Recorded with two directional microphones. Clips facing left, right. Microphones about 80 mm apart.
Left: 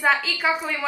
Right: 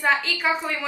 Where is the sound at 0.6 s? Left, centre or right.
Centre.